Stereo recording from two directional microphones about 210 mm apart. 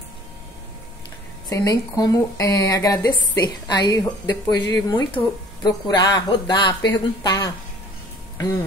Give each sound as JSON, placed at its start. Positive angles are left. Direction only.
{"t": 1.5, "sound": "a woman's voice", "side_deg": 15}